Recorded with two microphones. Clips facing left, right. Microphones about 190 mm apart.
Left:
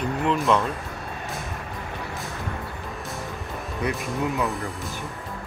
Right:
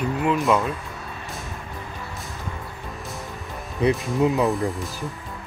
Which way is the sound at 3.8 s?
20° right (ahead or behind).